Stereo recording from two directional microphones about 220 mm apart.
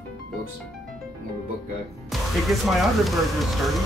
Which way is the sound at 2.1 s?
Centre (ahead or behind).